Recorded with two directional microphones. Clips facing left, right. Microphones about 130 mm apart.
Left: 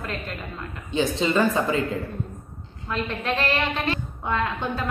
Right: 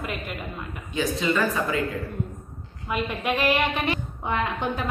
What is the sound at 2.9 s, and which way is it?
A woman's voice, 15° right (ahead or behind).